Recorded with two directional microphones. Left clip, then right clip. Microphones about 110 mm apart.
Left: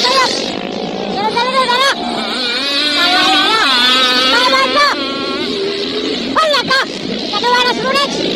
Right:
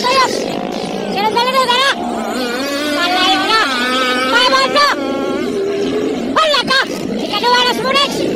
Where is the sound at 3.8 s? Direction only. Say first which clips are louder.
Left 4 dB; centre (ahead or behind).